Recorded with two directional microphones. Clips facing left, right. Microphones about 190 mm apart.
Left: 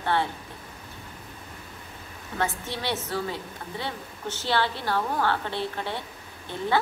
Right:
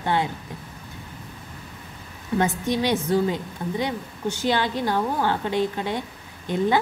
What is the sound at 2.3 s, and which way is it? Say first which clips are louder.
A woman's voice: right 8 dB; 15° right (ahead or behind).